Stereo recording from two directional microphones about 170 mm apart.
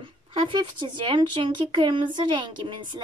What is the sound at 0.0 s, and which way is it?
A woman's voice, 30° right (ahead or behind).